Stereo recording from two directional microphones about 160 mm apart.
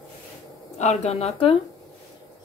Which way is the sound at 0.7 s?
45° left (ahead or behind).